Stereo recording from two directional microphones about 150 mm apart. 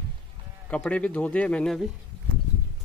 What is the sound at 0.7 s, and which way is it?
Speech, 10° left (ahead or behind).